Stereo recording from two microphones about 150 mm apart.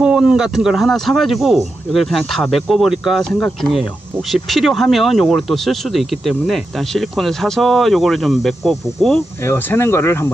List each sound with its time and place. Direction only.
0.0 s speech: 5° right (ahead or behind)
9.4 s speech: 15° left (ahead or behind)